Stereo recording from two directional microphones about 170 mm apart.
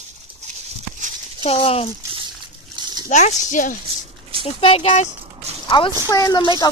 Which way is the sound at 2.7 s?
25° right (ahead or behind).